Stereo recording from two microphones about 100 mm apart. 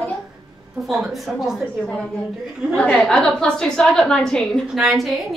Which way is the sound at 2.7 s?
10° left (ahead or behind).